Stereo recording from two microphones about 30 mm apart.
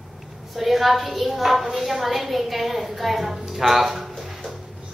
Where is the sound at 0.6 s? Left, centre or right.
Centre.